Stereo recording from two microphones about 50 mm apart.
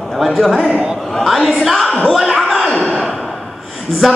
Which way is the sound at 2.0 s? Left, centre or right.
Centre.